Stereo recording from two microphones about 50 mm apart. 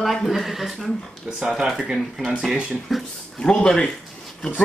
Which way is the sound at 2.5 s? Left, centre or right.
Right.